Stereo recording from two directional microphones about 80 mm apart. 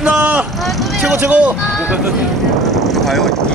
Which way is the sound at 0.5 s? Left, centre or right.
Centre.